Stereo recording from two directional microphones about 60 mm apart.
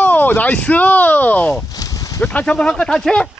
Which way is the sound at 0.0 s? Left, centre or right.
Left.